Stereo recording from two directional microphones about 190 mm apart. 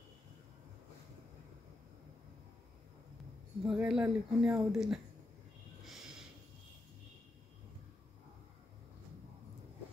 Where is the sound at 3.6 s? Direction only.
5° right (ahead or behind).